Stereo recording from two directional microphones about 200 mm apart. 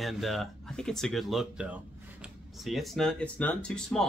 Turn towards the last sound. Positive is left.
turn(degrees=5)  # may be behind; listen again after turning